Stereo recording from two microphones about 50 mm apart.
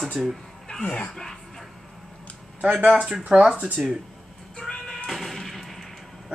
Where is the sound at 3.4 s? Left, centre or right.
Centre.